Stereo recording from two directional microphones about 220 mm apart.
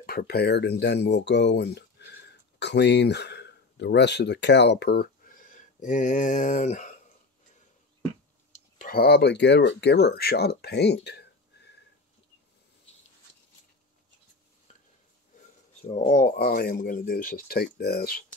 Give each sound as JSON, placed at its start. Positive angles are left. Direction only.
{"t": 0.0, "sound": "speech", "side_deg": 45}
{"t": 8.7, "sound": "speech", "side_deg": 40}
{"t": 15.9, "sound": "speech", "side_deg": 35}